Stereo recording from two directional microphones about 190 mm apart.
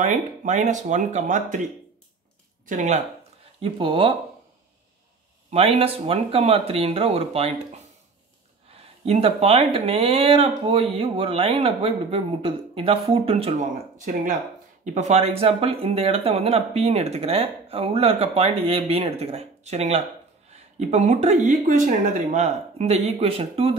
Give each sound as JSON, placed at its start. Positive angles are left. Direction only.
{"t": 0.0, "sound": "speech", "side_deg": -40}
{"t": 2.6, "sound": "speech", "side_deg": -40}
{"t": 3.6, "sound": "speech", "side_deg": -30}
{"t": 5.5, "sound": "speech", "side_deg": -30}
{"t": 9.0, "sound": "speech", "side_deg": -30}